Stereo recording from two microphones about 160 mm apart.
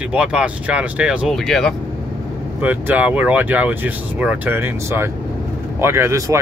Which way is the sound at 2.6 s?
10° right (ahead or behind).